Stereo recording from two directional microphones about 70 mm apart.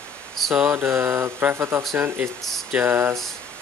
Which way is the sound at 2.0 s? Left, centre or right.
Right.